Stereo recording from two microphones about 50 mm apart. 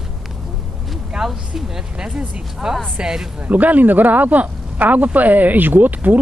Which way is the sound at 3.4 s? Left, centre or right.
Right.